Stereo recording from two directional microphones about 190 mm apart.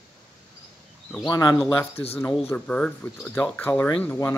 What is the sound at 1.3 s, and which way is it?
Speech, 20° left (ahead or behind).